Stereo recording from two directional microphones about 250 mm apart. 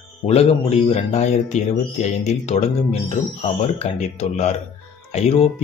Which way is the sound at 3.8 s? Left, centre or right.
Left.